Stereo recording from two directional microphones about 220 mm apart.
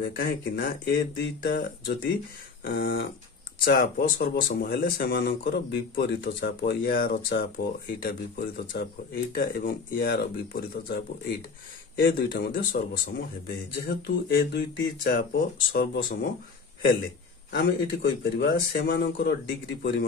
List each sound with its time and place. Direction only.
0.0 s a man's voice: 45° left (ahead or behind)
4.2 s a man's voice: 40° left (ahead or behind)
12.0 s a man's voice: 40° left (ahead or behind)
17.5 s a man's voice: 50° left (ahead or behind)